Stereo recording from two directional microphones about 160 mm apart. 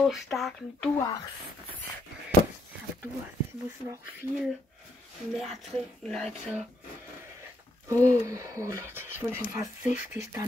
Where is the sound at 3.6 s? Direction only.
20° right (ahead or behind).